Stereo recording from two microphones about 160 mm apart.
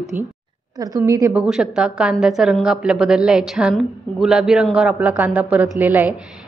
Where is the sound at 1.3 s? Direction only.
5° right (ahead or behind).